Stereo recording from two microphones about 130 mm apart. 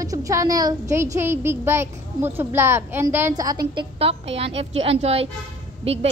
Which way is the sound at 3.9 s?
50° right (ahead or behind).